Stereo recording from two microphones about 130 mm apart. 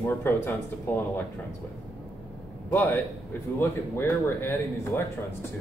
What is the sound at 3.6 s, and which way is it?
Speech, 20° left (ahead or behind).